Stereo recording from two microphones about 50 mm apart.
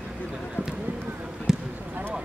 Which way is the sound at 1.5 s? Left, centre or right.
Centre.